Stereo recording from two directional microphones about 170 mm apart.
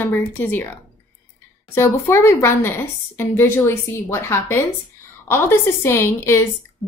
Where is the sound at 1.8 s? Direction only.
15° left (ahead or behind).